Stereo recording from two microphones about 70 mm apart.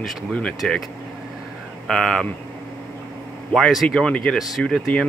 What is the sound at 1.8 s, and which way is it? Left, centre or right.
Speech, centre.